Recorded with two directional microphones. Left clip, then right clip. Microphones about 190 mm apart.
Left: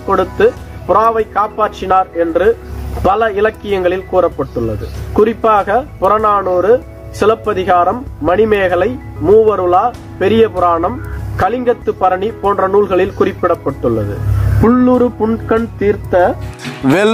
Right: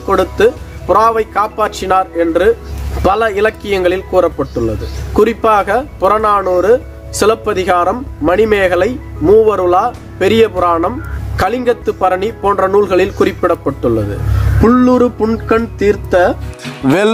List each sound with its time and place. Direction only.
0.1 s speech: centre (ahead or behind)
14.6 s speech: 15° right (ahead or behind)
16.6 s speech: centre (ahead or behind)